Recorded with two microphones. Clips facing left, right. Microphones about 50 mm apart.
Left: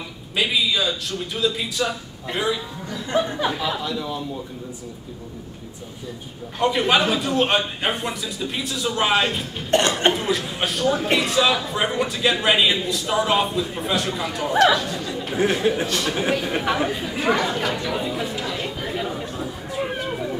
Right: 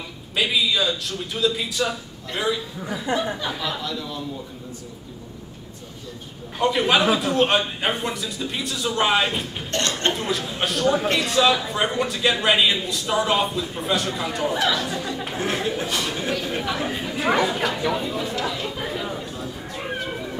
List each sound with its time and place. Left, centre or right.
0.4 s a man's voice: centre
2.9 s speech: centre
3.4 s speech: centre
6.6 s a man's voice: centre
9.7 s speech: centre
10.1 s a man's voice: centre
15.6 s speech: centre
17.1 s a man's voice: centre
17.9 s a man's voice: centre
18.5 s chatter: centre